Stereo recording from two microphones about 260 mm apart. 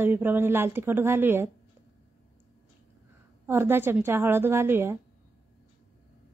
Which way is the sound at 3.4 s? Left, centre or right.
Centre.